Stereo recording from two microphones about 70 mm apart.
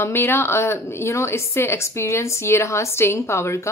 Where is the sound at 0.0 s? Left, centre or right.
Left.